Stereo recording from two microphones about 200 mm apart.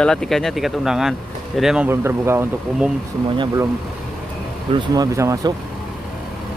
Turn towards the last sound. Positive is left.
turn(degrees=-15)  # may be behind; listen again after turning